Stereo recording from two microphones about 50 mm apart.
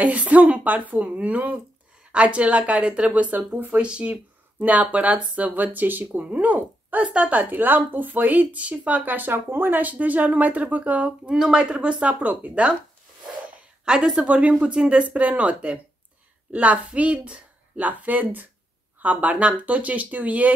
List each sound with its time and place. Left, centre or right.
0.0 s a woman's voice: right
3.8 s a woman's voice: right
4.1 s speech: right
7.5 s speech: right
11.2 s speech: centre
11.8 s a woman's voice: right
13.8 s a woman's voice: centre